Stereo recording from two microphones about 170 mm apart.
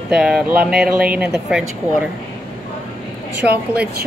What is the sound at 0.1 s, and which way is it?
Speech, 5° right (ahead or behind).